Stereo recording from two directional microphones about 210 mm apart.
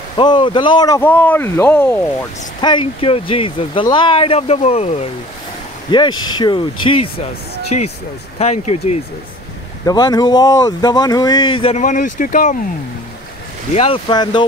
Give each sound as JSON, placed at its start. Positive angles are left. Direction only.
{"t": 0.2, "sound": "speech", "side_deg": 20}
{"t": 2.6, "sound": "speech", "side_deg": 25}
{"t": 9.8, "sound": "speech", "side_deg": 20}
{"t": 11.8, "sound": "speech", "side_deg": 40}
{"t": 13.7, "sound": "speech", "side_deg": 25}